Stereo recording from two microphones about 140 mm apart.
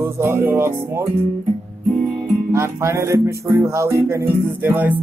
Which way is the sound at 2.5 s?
20° right (ahead or behind).